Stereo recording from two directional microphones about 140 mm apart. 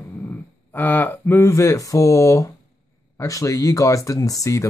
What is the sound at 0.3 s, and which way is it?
Speech, 15° left (ahead or behind).